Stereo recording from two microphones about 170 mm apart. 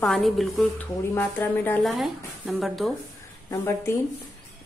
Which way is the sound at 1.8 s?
Centre (ahead or behind).